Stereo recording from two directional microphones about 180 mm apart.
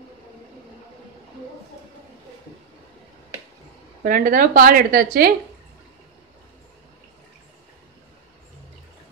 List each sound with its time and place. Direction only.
4.0 s a woman's voice: 50° right (ahead or behind)